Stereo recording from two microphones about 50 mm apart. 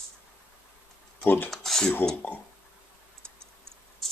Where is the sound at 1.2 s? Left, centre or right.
Left.